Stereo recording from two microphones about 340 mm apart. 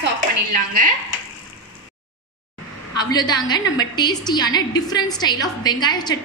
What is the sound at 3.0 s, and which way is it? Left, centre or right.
A woman's voice, centre.